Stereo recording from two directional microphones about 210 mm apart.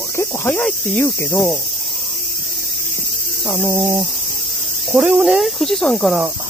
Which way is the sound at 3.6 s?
10° right (ahead or behind).